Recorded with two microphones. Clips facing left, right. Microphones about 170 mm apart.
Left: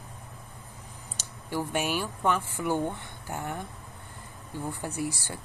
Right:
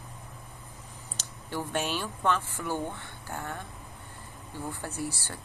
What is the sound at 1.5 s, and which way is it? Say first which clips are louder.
Speech: left 2 dB; 10° left (ahead or behind).